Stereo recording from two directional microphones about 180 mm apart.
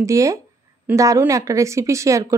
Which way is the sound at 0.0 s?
15° right (ahead or behind).